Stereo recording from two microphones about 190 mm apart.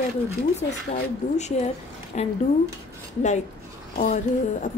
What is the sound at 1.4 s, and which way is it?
Speech, 35° left (ahead or behind).